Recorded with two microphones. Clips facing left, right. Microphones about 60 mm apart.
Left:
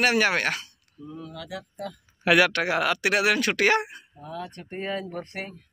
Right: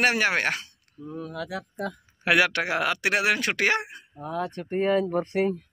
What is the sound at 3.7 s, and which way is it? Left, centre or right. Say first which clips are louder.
Speech: left 3 dB; centre.